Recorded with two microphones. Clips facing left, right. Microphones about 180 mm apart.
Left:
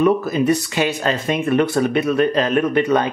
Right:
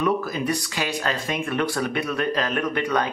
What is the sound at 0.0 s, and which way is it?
Speech, 25° left (ahead or behind).